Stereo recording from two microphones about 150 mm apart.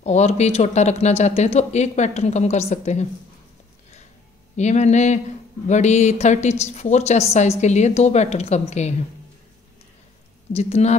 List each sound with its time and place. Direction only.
0.0 s speech: 45° left (ahead or behind)
4.6 s speech: 50° left (ahead or behind)
10.5 s speech: 45° left (ahead or behind)